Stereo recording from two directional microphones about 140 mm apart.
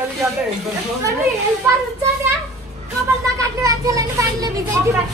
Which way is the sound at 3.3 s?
25° right (ahead or behind).